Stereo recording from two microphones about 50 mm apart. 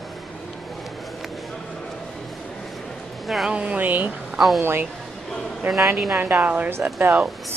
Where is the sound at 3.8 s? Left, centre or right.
Right.